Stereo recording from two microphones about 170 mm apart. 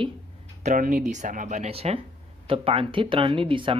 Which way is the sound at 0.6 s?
45° right (ahead or behind).